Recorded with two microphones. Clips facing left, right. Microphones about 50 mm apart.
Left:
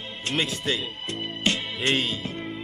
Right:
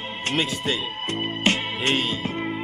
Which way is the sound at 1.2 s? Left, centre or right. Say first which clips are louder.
Right 3 dB; right.